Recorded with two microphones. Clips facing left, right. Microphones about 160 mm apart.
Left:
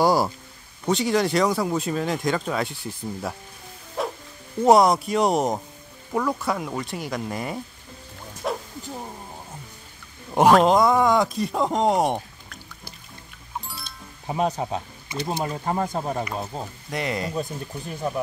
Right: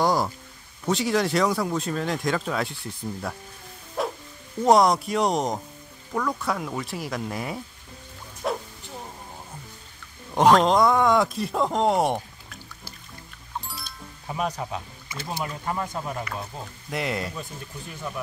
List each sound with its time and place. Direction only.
0.0 s a sound: 5° left (ahead or behind)
0.8 s speech: centre (ahead or behind)
4.0 s music: centre (ahead or behind)
4.6 s speech: 5° left (ahead or behind)
8.4 s bow-wow: centre (ahead or behind)
10.3 s speech: 5° left (ahead or behind)
13.7 s music: centre (ahead or behind)
14.2 s speech: 30° left (ahead or behind)
15.4 s speech: 35° left (ahead or behind)
16.9 s speech: centre (ahead or behind)